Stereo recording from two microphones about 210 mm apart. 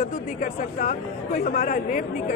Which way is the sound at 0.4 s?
40° left (ahead or behind).